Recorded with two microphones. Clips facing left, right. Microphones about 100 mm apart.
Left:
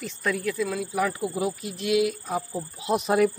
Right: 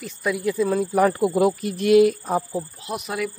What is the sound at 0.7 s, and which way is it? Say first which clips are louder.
Speech: right 7 dB; 45° right (ahead or behind).